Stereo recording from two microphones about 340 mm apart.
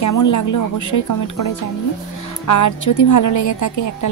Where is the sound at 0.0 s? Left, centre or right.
Left.